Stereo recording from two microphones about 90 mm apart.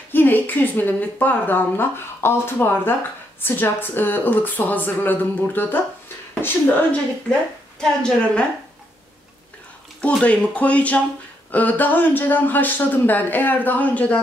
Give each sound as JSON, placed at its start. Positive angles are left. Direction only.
{"t": 0.1, "sound": "speech", "side_deg": 20}
{"t": 10.0, "sound": "speech", "side_deg": 15}